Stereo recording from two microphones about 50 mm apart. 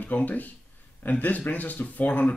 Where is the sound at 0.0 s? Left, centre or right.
Left.